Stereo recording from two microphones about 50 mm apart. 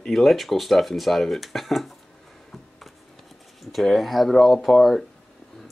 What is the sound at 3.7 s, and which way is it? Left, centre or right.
Speech, centre.